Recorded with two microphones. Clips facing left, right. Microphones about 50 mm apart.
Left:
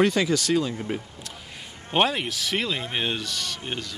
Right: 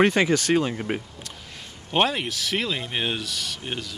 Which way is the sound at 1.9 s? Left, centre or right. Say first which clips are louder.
Even; centre.